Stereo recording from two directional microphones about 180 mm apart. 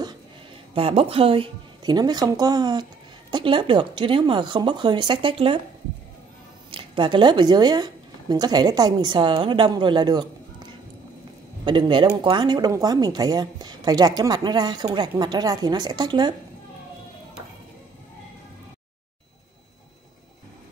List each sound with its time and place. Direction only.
0.7 s speech: 30° right (ahead or behind)
6.7 s speech: 25° right (ahead or behind)